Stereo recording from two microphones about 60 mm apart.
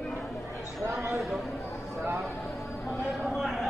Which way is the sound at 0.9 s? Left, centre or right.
Right.